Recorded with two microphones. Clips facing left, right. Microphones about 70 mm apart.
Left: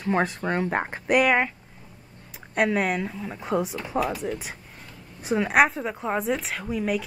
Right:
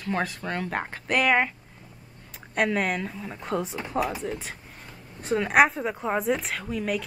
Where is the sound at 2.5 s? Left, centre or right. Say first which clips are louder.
Left 2 dB; centre.